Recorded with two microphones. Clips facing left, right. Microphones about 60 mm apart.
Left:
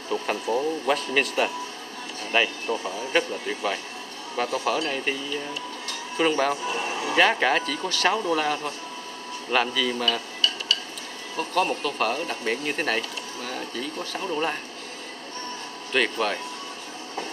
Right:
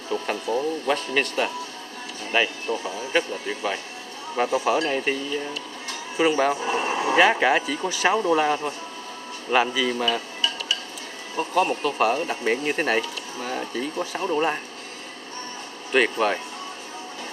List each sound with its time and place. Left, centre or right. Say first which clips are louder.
0.1 s speech: even; centre
4.4 s speech: right 3 dB; centre
6.6 s speech: right 4 dB; right
7.2 s speech: right 2 dB; centre
15.9 s speech: right 4 dB; centre